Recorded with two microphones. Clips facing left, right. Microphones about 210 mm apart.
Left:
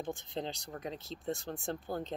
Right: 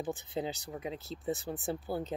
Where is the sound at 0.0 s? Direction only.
5° right (ahead or behind).